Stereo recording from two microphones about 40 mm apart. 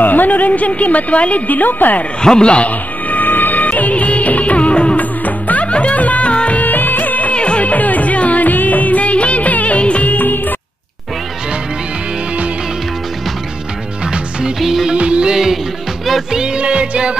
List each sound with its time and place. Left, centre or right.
0.0 s a woman's voice: left
2.2 s a man's voice: left
3.1 s music of bollywood: left
5.2 s music: left
6.3 s music of bollywood: left
6.6 s music of bollywood: left
7.3 s music: left
10.1 s music: left
14.6 s music: centre
14.9 s music: right